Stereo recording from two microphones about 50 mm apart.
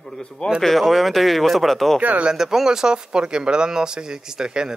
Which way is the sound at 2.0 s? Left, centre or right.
Right.